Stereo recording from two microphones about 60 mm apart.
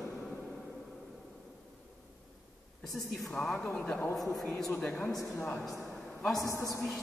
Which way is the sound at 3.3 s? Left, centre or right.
Centre.